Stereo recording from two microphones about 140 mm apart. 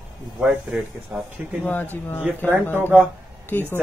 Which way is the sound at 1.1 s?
15° right (ahead or behind).